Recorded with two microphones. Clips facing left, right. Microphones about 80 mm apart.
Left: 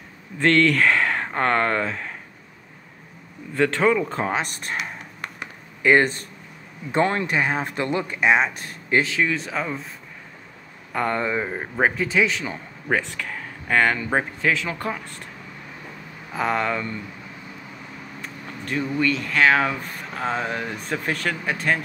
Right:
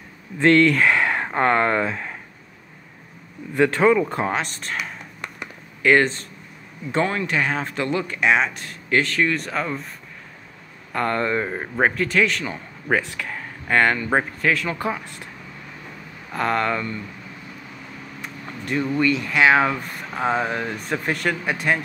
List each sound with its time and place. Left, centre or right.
0.4 s speech: centre
3.5 s speech: centre
4.3 s speech: centre
5.8 s a sound: left
7.1 s speech: left
7.3 s speech: centre
8.2 s speech: centre
10.9 s speech: centre
11.9 s speech: centre
13.2 s a sound: centre
14.1 s speech: centre
16.3 s speech: centre
18.2 s speech: centre